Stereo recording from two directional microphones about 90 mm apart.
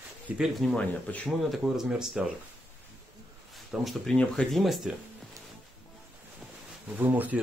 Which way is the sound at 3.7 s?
Centre (ahead or behind).